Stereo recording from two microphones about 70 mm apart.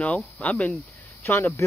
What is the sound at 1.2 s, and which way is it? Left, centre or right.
Speech, left.